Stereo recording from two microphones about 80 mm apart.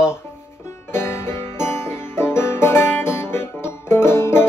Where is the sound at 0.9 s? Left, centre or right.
Left.